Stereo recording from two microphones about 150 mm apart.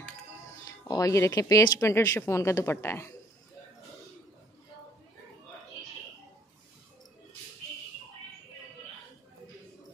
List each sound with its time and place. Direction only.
0.7 s speech: 25° left (ahead or behind)